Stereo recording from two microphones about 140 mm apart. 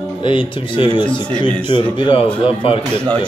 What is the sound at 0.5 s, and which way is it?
Speech, 35° left (ahead or behind).